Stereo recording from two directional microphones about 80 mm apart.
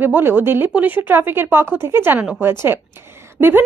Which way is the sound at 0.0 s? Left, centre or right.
Right.